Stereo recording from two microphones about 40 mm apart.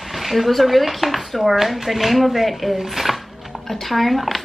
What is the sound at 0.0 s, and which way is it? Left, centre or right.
Speech, centre.